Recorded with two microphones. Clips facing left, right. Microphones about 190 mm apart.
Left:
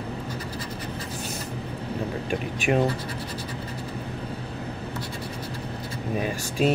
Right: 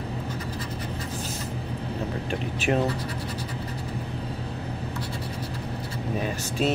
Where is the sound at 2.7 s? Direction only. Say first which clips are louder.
Left 2 dB; 15° left (ahead or behind).